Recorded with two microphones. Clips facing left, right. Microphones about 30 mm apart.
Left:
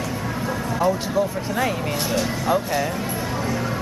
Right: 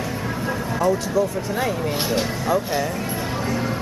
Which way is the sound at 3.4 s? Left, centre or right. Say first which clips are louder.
Right 2 dB; centre.